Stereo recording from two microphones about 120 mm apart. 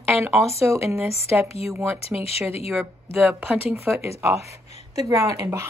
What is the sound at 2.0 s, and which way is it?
Speech, 55° left (ahead or behind).